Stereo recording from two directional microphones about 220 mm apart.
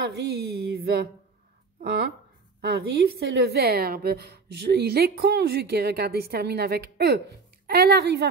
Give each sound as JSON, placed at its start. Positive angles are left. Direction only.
{"t": 0.0, "sound": "a woman's voice", "side_deg": -50}
{"t": 2.6, "sound": "a woman's voice", "side_deg": -45}